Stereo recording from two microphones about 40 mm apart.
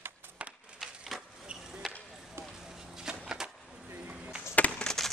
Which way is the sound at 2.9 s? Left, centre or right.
Centre.